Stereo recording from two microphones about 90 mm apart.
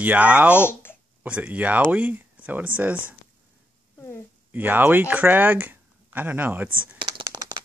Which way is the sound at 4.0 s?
30° left (ahead or behind).